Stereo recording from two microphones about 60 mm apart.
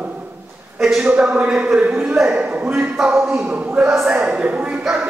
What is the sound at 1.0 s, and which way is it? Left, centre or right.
Speech, centre.